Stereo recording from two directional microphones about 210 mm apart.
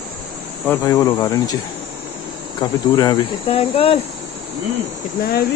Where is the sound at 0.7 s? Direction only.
15° left (ahead or behind).